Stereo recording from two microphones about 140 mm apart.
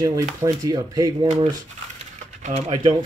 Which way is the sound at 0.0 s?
25° right (ahead or behind).